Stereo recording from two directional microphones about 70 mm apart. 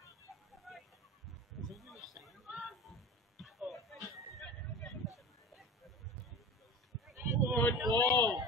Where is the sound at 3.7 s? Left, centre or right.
Centre.